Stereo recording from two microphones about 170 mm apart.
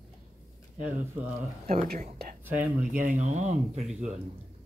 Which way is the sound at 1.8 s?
50° right (ahead or behind).